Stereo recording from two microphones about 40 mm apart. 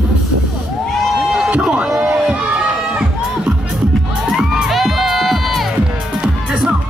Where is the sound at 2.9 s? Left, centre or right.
Right.